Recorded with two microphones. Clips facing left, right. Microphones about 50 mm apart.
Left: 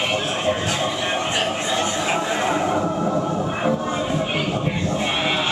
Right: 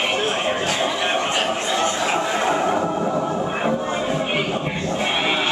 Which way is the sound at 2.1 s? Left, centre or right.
Centre.